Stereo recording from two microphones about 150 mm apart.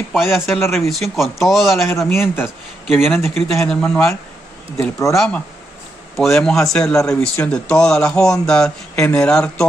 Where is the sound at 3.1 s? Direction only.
5° left (ahead or behind).